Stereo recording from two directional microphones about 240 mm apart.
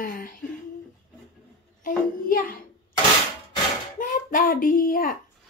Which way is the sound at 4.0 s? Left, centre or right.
Left.